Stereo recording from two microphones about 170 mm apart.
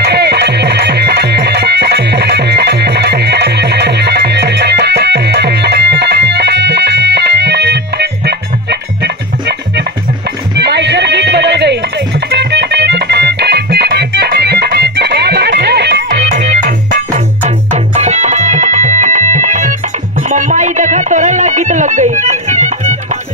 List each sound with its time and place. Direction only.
0.0 s music: 75° right (ahead or behind)
12.3 s music: 80° right
16.1 s music: 45° right (ahead or behind)
17.4 s music: 40° right (ahead or behind)